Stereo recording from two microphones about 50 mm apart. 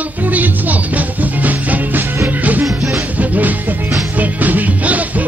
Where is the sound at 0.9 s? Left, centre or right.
Right.